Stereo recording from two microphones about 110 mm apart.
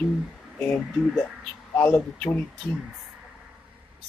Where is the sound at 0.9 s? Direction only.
5° right (ahead or behind).